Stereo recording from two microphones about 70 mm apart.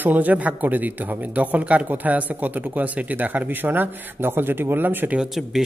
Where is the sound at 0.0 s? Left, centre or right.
Right.